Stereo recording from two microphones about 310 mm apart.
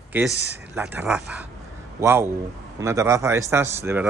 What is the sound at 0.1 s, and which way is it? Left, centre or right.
A man's voice, centre.